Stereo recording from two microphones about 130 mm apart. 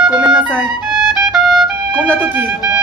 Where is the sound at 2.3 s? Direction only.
10° right (ahead or behind).